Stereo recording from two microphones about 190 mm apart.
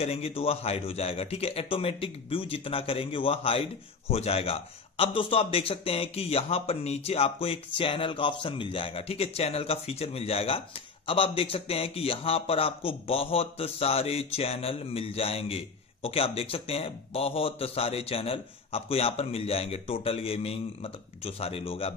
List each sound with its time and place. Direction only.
0.0 s a man's voice: 30° left (ahead or behind)